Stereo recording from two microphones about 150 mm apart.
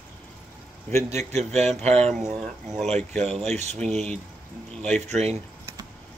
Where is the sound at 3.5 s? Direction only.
45° right (ahead or behind).